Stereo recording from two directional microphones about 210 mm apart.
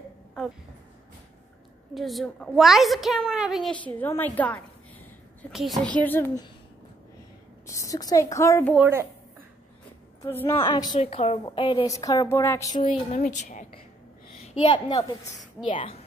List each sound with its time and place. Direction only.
2.0 s a woman's voice: centre (ahead or behind)
5.9 s a woman's voice: 10° left (ahead or behind)
7.6 s a woman's voice: 15° left (ahead or behind)
8.7 s speech: 10° right (ahead or behind)
10.2 s a woman's voice: 10° left (ahead or behind)
10.5 s a woman's voice: 20° left (ahead or behind)
12.8 s speech: 35° left (ahead or behind)
14.6 s a woman's voice: 25° left (ahead or behind)